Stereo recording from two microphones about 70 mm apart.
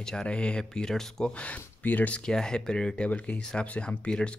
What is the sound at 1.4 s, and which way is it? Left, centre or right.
Speech, left.